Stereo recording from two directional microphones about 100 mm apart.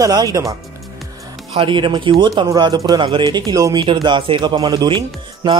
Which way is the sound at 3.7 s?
50° right (ahead or behind).